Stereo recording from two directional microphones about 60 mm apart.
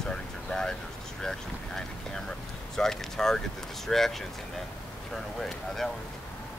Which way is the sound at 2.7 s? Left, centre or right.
Centre.